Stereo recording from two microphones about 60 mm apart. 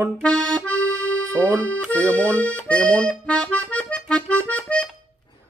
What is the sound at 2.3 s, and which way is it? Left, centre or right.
Accordion, left.